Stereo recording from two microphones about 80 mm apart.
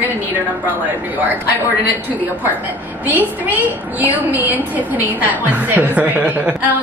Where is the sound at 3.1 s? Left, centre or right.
Right.